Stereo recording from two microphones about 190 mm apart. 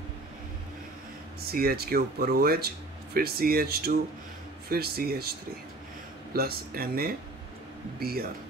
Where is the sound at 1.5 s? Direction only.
55° right (ahead or behind).